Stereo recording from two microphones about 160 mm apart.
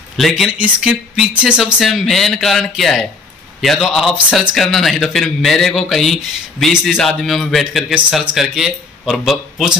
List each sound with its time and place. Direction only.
0.2 s a man's voice: 5° right (ahead or behind)